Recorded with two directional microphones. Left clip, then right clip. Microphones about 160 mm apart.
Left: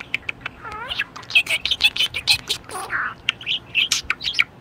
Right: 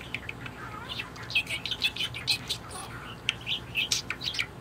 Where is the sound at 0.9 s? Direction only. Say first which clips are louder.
Left 12 dB; 45° left (ahead or behind).